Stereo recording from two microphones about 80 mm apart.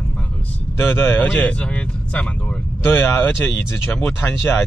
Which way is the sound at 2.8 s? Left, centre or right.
Left.